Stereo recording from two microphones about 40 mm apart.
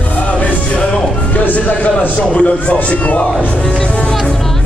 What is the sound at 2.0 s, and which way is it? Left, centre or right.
A man's voice, left.